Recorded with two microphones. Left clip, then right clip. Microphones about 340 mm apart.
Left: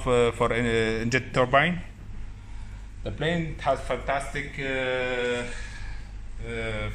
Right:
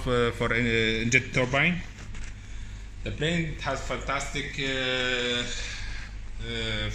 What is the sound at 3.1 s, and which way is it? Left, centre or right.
Speech, left.